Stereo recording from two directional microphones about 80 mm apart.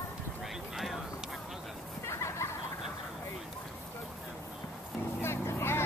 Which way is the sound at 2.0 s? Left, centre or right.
Left.